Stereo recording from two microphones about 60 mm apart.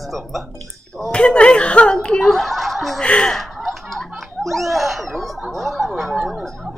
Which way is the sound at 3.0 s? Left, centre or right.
Centre.